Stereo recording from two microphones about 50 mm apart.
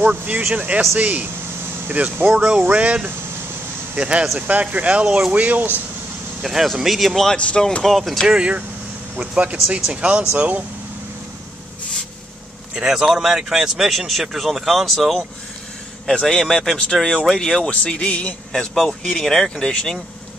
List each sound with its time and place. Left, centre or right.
0.0 s speech: right
0.6 s speech: right
2.7 s speech: right
6.4 s speech: centre
7.3 s speech: left
7.8 s speech: centre
8.3 s speech: centre
10.3 s speech: right
12.7 s speech: centre
16.2 s speech: centre
17.6 s speech: left
18.5 s speech: centre